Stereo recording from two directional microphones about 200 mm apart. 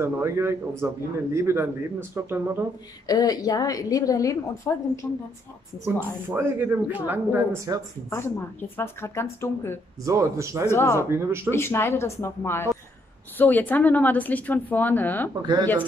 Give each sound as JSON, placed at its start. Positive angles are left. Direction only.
{"t": 0.0, "sound": "speech", "side_deg": -15}
{"t": 3.1, "sound": "a woman's voice", "side_deg": 20}
{"t": 5.9, "sound": "speech", "side_deg": -10}
{"t": 8.1, "sound": "a woman's voice", "side_deg": 10}
{"t": 10.0, "sound": "speech", "side_deg": -15}
{"t": 10.7, "sound": "a woman's voice", "side_deg": 15}
{"t": 11.1, "sound": "speech", "side_deg": -10}
{"t": 11.5, "sound": "a woman's voice", "side_deg": 10}